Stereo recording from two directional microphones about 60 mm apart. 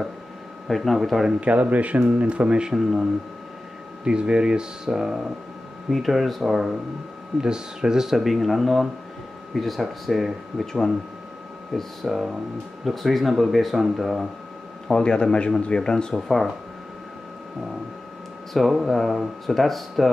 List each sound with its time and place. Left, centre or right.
0.7 s speech: centre
1.4 s speech: right; by 10.7 s centre
11.7 s speech: centre
14.9 s speech: centre
18.5 s speech: centre